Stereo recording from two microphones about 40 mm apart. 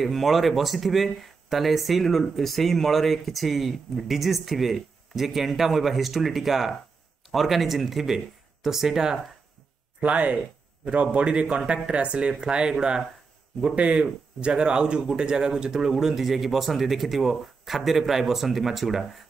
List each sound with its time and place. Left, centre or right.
0.0 s speech: centre
9.9 s speech: right; by 13.0 s centre
13.7 s speech: right; by 19.0 s centre